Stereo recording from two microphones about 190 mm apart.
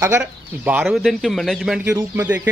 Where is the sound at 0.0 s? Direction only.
10° right (ahead or behind).